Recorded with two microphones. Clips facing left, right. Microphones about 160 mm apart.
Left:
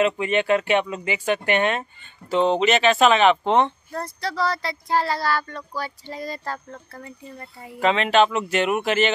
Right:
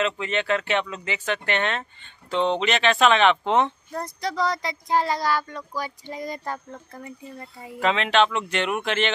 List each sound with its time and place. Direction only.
0.0 s speech: 15° left (ahead or behind)
3.9 s speech: 20° right (ahead or behind)
7.8 s speech: centre (ahead or behind)